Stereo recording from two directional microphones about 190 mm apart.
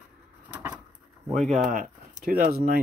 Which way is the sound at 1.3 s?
40° right (ahead or behind).